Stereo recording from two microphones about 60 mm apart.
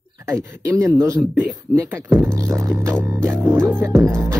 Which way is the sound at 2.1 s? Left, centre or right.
Right.